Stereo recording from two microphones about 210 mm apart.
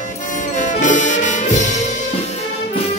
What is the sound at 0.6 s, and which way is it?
Music, 35° left (ahead or behind).